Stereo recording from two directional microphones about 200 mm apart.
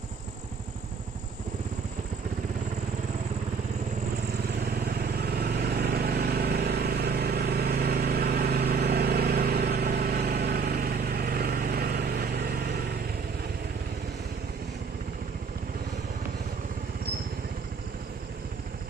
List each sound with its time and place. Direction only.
4.8 s vehicle: 50° right (ahead or behind)